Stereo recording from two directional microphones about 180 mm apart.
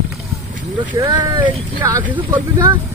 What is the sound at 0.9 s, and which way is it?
Speech, 20° right (ahead or behind).